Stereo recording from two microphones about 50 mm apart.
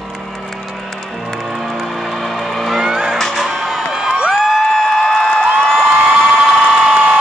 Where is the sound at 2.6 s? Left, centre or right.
Centre.